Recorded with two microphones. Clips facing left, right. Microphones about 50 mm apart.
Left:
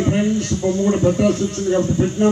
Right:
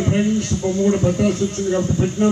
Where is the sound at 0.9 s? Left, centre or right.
Left.